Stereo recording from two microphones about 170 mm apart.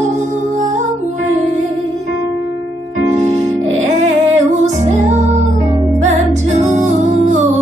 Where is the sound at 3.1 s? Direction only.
40° right (ahead or behind).